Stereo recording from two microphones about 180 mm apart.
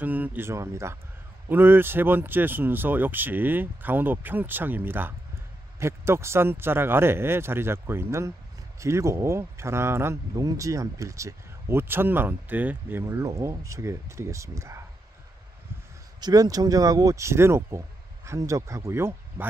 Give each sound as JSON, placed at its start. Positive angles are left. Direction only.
{"t": 0.0, "sound": "speech", "side_deg": -10}
{"t": 16.2, "sound": "speech", "side_deg": -20}